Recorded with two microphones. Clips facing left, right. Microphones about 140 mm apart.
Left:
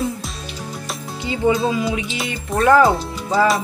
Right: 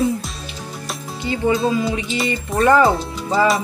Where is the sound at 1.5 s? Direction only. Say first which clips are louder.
Right 1 dB; 5° left (ahead or behind).